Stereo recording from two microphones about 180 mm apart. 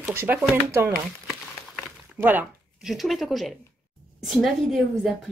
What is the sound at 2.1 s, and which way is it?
Speech, 10° right (ahead or behind).